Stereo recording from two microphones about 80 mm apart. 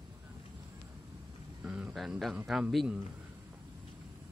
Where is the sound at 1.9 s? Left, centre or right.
Centre.